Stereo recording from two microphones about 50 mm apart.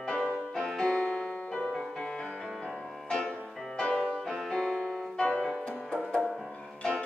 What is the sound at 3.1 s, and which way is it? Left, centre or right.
Music, centre.